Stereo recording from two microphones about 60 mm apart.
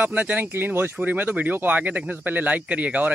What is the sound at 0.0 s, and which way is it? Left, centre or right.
Speech, right.